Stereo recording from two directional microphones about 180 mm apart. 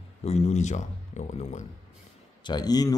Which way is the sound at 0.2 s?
40° left (ahead or behind).